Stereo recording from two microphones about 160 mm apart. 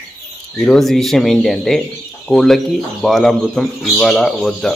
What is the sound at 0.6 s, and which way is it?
A man's voice, 5° left (ahead or behind).